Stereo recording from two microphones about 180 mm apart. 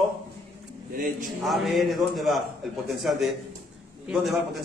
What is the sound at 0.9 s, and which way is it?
Speech, 50° right (ahead or behind).